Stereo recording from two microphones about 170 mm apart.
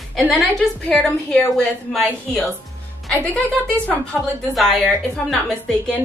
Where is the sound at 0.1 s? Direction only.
5° left (ahead or behind).